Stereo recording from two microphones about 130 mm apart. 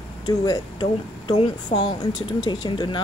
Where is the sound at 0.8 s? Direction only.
50° left (ahead or behind).